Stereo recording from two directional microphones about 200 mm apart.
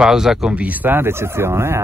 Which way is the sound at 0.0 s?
Centre (ahead or behind).